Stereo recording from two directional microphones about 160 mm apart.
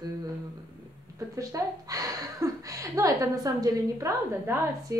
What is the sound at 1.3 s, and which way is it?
A woman's voice, 20° right (ahead or behind).